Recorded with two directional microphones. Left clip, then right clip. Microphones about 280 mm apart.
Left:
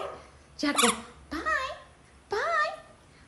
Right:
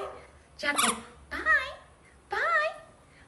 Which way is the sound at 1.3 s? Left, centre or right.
Centre.